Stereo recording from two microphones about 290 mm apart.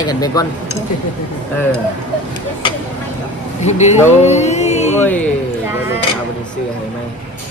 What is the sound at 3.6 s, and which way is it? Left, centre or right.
Speech, left.